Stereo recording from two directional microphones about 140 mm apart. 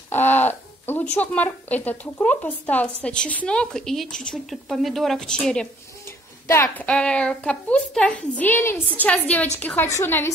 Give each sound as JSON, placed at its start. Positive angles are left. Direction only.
{"t": 0.1, "sound": "a sound", "side_deg": 15}
{"t": 1.2, "sound": "a woman's voice", "side_deg": 10}
{"t": 6.0, "sound": "a woman's voice", "side_deg": 20}